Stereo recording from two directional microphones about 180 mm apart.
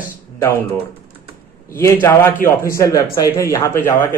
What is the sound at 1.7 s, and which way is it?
A man's voice, 15° left (ahead or behind).